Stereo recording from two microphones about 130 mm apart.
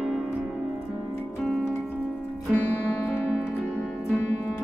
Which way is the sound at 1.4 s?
Centre (ahead or behind).